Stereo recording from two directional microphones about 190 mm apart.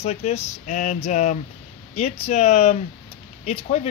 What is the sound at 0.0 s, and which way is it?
Speech, 35° left (ahead or behind).